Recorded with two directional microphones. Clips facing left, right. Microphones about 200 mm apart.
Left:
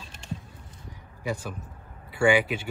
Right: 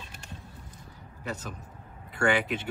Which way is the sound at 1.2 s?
10° left (ahead or behind).